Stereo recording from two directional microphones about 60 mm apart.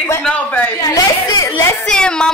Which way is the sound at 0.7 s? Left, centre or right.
Left.